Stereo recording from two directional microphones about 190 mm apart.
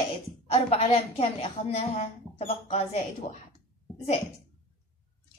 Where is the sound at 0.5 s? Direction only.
35° left (ahead or behind).